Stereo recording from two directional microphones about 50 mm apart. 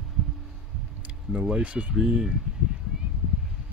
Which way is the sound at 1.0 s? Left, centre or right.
Right.